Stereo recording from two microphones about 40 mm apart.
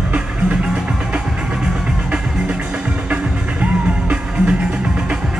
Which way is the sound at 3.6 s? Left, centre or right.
Right.